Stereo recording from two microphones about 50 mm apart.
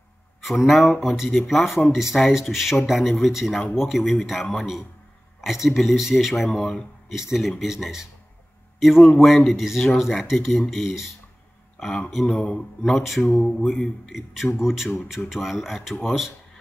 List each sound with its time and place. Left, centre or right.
0.4 s a man's voice: centre
12.1 s speech: centre
12.4 s speech: centre
13.5 s mantra: centre
14.1 s a man's voice: centre